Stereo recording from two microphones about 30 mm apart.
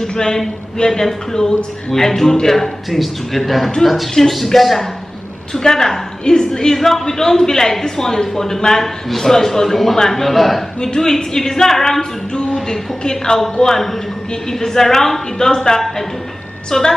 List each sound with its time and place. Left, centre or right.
0.0 s a man's voice: centre
5.5 s speech: centre
11.0 s speech: centre
13.0 s speech: left
14.6 s speech: centre